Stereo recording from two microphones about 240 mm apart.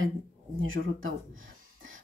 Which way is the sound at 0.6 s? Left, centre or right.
Right.